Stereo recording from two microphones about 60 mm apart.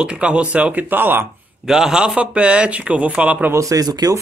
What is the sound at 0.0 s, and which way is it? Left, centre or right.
Speech, centre.